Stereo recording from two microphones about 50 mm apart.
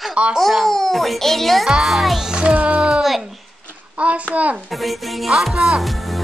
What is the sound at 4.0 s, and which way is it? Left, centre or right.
Speech, right.